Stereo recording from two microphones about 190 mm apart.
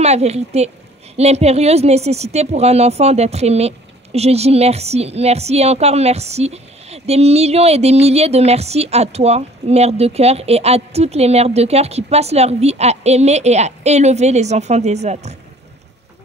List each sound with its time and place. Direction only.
0.0 s speech: 35° right (ahead or behind)